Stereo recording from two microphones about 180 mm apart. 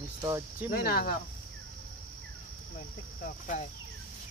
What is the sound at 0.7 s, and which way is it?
Speech, 55° left (ahead or behind).